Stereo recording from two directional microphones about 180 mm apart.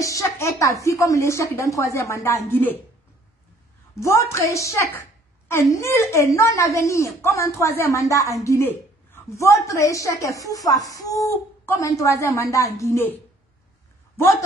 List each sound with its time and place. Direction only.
0.0 s a woman's voice: 15° left (ahead or behind)
4.0 s a woman's voice: 15° left (ahead or behind)